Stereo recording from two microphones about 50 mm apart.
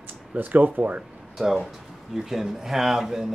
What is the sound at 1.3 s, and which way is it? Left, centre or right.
Speech, centre.